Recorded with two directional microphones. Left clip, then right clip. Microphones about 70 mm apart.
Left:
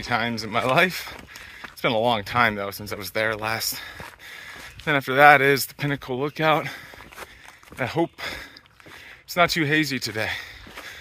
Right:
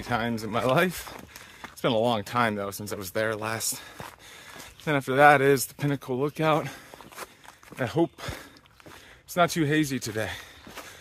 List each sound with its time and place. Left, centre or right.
0.0 s speech: right
0.7 s speech: right
1.6 s a sound: right
2.0 s speech: right
2.8 s speech: right
3.3 s speech: right
5.3 s speech: right
5.9 s speech: right
7.8 s speech: right
9.4 s speech: right